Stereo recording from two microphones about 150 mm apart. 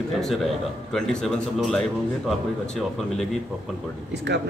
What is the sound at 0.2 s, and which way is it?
A man's voice, centre (ahead or behind).